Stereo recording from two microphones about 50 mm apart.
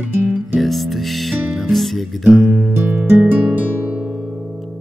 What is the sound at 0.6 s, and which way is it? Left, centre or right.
Music, centre.